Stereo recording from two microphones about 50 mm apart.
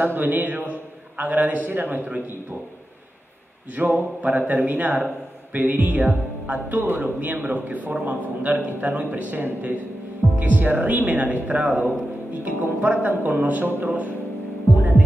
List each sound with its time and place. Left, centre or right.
0.0 s a man's voice: right
3.7 s speech: right